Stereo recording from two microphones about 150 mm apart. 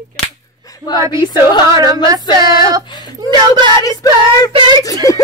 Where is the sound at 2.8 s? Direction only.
30° left (ahead or behind).